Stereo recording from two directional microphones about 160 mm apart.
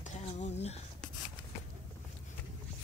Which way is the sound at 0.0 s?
45° left (ahead or behind).